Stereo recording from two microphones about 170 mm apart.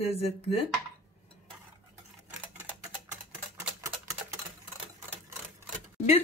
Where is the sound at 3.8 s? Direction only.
15° right (ahead or behind).